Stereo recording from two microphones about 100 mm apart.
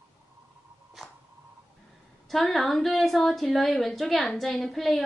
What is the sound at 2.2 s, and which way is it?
A woman's voice, centre (ahead or behind).